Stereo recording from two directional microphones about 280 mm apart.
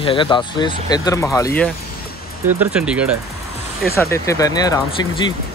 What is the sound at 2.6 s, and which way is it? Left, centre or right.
Speech, centre.